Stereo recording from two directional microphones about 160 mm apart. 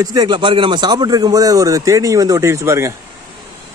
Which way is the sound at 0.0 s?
25° right (ahead or behind).